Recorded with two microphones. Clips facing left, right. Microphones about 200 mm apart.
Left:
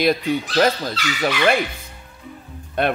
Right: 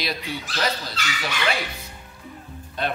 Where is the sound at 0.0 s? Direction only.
50° left (ahead or behind).